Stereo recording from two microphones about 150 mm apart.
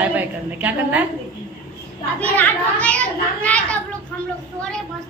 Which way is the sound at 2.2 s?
10° left (ahead or behind).